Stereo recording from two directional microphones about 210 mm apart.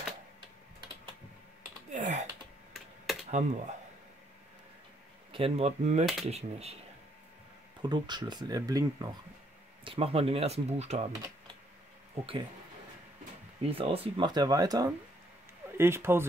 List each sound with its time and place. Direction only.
1.9 s computer keyboard: 35° right (ahead or behind)
3.3 s speech: 35° right (ahead or behind)
5.3 s speech: 30° right (ahead or behind)
7.8 s speech: 20° right (ahead or behind)
13.6 s speech: 25° right (ahead or behind); by 16.3 s 10° right (ahead or behind)